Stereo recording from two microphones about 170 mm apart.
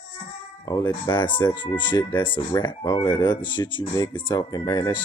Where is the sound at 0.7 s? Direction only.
25° left (ahead or behind).